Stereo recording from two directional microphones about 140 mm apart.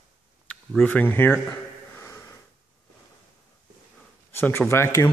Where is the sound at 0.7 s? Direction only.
10° left (ahead or behind).